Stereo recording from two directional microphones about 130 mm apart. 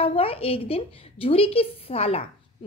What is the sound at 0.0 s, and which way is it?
A woman's voice, 45° left (ahead or behind).